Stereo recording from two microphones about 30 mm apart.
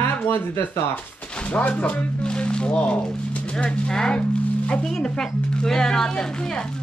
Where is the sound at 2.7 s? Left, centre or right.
Left.